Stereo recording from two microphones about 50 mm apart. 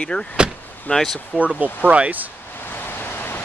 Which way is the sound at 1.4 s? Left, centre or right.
Right.